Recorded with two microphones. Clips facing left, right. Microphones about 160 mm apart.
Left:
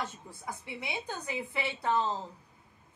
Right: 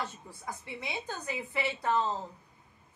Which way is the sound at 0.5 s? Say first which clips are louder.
Even; 15° left (ahead or behind).